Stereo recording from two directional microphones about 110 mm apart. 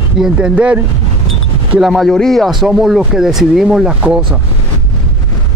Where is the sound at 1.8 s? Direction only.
Centre (ahead or behind).